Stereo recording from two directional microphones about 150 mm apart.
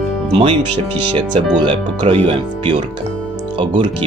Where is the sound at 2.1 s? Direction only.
35° right (ahead or behind).